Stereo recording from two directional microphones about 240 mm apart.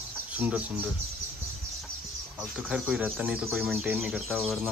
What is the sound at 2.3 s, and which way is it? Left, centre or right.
Speech, centre.